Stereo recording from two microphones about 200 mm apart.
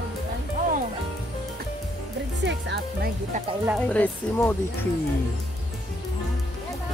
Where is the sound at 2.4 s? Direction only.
55° right (ahead or behind).